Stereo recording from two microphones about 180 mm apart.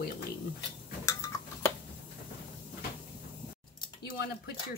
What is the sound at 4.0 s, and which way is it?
Cutlery, 60° left (ahead or behind).